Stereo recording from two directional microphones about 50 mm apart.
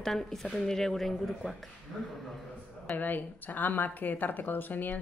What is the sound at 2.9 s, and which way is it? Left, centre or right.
A woman's voice, left.